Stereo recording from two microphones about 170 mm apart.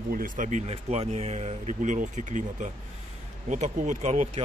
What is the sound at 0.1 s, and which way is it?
Speech, 55° right (ahead or behind).